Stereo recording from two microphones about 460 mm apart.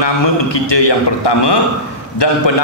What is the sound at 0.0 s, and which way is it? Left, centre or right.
A man's voice, left.